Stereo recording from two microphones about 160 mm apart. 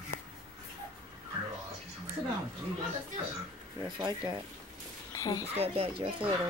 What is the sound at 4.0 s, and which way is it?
Speech, 25° right (ahead or behind).